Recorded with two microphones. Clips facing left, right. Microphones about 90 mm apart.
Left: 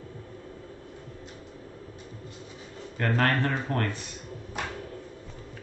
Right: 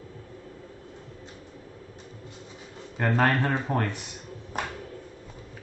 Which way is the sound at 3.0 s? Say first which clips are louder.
Right 2 dB; 15° right (ahead or behind).